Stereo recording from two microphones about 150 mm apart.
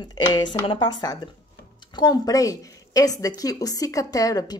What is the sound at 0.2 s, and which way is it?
A woman's voice, 30° left (ahead or behind).